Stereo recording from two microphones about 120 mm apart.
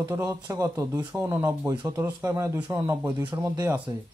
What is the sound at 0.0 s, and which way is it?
Speech, 20° right (ahead or behind).